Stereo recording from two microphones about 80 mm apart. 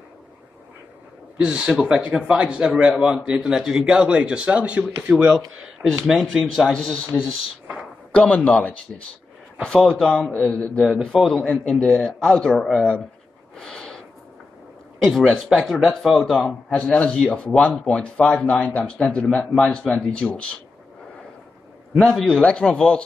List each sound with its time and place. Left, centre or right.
1.4 s speech: centre
5.1 s speech: centre
6.4 s speech: centre
8.1 s a man's voice: centre
13.6 s a sound: centre
15.0 s speech: centre
16.6 s a man's voice: centre
22.0 s a man's voice: centre